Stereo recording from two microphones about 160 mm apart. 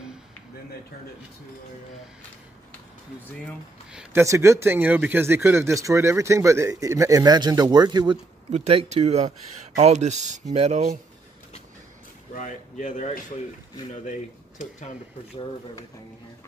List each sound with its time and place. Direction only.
3.9 s speech: 5° right (ahead or behind)
4.2 s speech: 15° right (ahead or behind)
8.5 s speech: 45° right (ahead or behind)
12.4 s speech: 50° left (ahead or behind)
14.6 s speech: 50° left (ahead or behind)